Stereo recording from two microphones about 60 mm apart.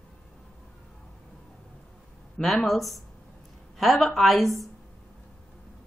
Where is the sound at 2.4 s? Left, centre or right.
Centre.